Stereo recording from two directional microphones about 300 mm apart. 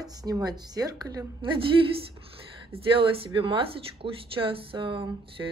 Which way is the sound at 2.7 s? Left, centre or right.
Centre.